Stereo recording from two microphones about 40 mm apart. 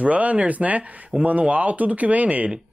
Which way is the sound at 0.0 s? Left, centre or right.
Right.